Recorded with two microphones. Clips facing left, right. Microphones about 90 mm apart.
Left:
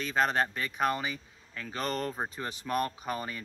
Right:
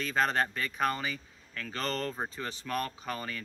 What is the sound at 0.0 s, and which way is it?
Speech, 5° left (ahead or behind).